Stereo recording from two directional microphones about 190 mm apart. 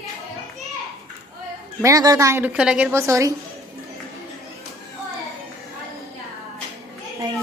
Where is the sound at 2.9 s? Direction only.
15° right (ahead or behind).